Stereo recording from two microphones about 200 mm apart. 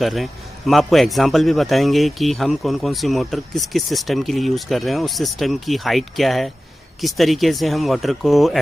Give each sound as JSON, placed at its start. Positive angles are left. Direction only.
{"t": 0.0, "sound": "a man's voice", "side_deg": 0}